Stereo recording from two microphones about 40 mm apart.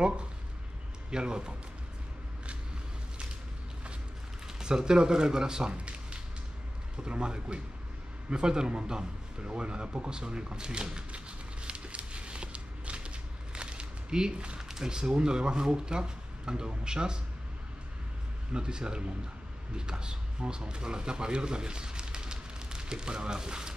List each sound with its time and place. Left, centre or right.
1.1 s speech: right
4.6 s speech: centre
7.0 s speech: right
8.3 s a sound: right
14.6 s speech: centre
18.5 s speech: right